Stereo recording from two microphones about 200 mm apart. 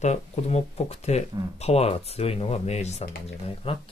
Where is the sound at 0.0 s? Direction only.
35° left (ahead or behind).